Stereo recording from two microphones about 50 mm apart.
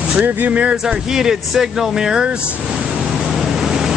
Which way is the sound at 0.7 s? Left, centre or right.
Centre.